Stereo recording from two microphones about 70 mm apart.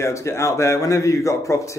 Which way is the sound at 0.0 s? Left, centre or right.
Left.